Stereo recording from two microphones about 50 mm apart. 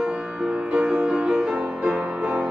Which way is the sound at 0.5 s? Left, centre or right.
Right.